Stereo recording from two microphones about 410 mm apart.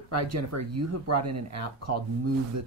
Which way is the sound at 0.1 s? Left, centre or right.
Right.